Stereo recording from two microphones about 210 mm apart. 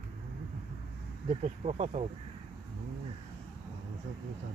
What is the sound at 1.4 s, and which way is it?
Speech, 30° right (ahead or behind).